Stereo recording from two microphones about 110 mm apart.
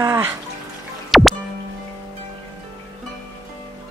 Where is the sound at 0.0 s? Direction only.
20° right (ahead or behind).